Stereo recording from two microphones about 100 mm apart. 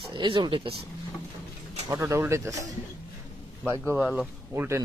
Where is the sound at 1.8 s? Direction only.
30° right (ahead or behind).